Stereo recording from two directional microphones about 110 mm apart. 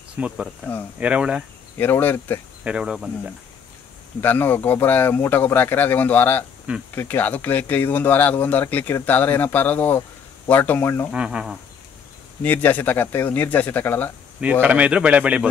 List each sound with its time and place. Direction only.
0.2 s speech: 15° right (ahead or behind)
1.8 s speech: 20° left (ahead or behind)
2.6 s speech: 10° right (ahead or behind)
4.2 s speech: 20° left (ahead or behind)
11.1 s speech: 10° right (ahead or behind)
12.4 s speech: 15° left (ahead or behind)
14.4 s speech: 10° right (ahead or behind)